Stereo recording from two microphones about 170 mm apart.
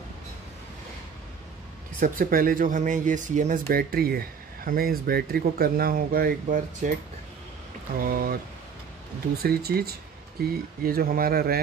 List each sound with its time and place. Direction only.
2.0 s speech: 55° right (ahead or behind)
8.0 s speech: 60° right (ahead or behind)
9.4 s speech: 65° right (ahead or behind)